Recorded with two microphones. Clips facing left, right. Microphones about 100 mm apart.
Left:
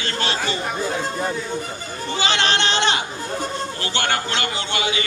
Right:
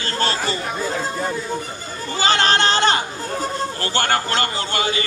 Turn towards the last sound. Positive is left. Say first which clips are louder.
# right 2 dB
turn(degrees=-40)  # may be behind; listen again after turning